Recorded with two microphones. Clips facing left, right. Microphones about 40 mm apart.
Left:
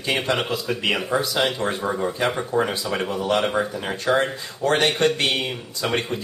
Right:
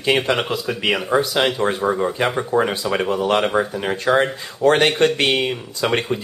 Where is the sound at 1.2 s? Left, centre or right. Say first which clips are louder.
Right 3 dB; right.